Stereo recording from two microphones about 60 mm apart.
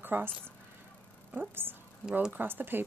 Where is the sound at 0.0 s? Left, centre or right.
Right.